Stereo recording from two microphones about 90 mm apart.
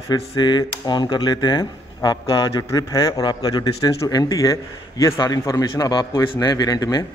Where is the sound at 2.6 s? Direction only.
40° left (ahead or behind).